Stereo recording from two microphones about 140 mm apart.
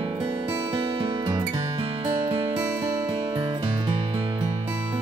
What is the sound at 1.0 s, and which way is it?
Music, 25° right (ahead or behind).